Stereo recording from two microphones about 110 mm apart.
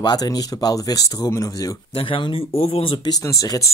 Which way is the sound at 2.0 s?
50° left (ahead or behind).